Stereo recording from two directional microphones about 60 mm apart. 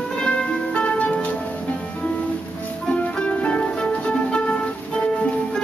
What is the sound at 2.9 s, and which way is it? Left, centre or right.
Music, centre.